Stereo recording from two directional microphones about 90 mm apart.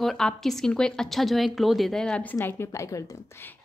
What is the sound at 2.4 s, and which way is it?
Speech, 30° left (ahead or behind).